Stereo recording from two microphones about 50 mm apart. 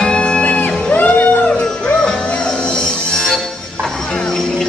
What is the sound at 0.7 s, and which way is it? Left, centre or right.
Music, left.